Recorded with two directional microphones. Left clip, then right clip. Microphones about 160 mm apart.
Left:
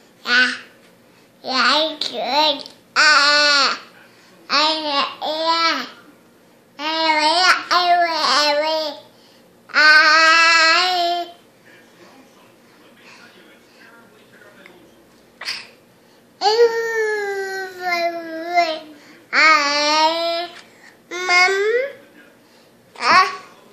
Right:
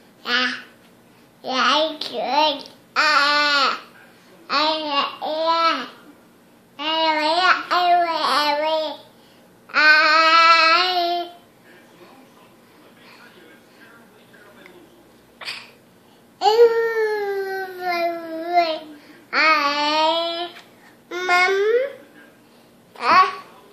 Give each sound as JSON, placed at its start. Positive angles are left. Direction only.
{"t": 0.2, "sound": "quack", "side_deg": 10}
{"t": 1.4, "sound": "a child's voice", "side_deg": 10}
{"t": 4.5, "sound": "babbling", "side_deg": 15}
{"t": 6.8, "sound": "child singing", "side_deg": 15}
{"t": 15.4, "sound": "a sound", "side_deg": 5}
{"t": 16.3, "sound": "baby cry", "side_deg": 5}
{"t": 19.3, "sound": "babbling", "side_deg": 10}
{"t": 22.9, "sound": "babbling", "side_deg": 10}